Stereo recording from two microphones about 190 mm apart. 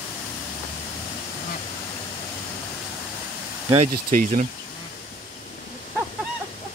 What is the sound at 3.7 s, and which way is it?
Speech, 40° right (ahead or behind).